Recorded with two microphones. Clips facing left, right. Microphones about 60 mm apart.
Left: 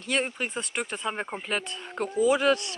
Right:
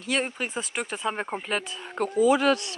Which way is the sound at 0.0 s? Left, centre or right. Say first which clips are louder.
Right 1 dB; centre.